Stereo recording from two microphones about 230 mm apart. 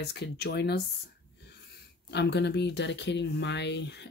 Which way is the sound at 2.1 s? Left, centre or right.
Left.